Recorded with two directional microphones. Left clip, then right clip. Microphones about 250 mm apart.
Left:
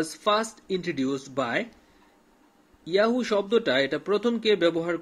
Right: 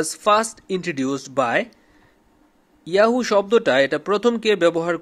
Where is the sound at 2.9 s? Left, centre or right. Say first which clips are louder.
Right 6 dB; right.